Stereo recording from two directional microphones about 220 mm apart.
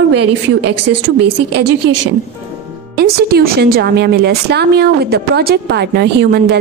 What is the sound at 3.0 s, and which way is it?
Speech, 45° right (ahead or behind).